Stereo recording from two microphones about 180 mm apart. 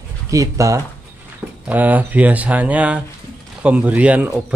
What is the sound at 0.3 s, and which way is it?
Speech, 20° right (ahead or behind).